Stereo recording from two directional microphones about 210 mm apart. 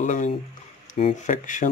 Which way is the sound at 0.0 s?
35° left (ahead or behind).